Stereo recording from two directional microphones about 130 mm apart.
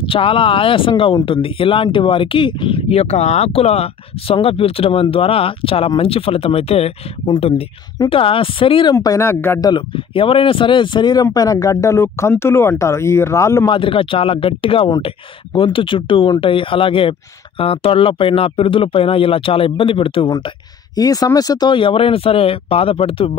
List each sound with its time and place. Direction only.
0.0 s speech: 45° left (ahead or behind)
8.9 s speech: 25° left (ahead or behind)
9.7 s speech: 40° left (ahead or behind); by 13.7 s 20° left (ahead or behind)
13.7 s speech: 45° left (ahead or behind)
20.2 s speech: 30° left (ahead or behind); by 23.3 s 50° left (ahead or behind)